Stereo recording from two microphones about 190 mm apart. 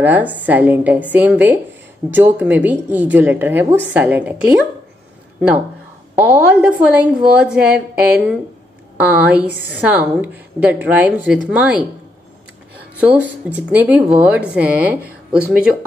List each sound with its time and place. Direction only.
0.0 s a woman's voice: 10° right (ahead or behind)
6.1 s a woman's voice: 5° right (ahead or behind)
13.0 s a woman's voice: 5° right (ahead or behind)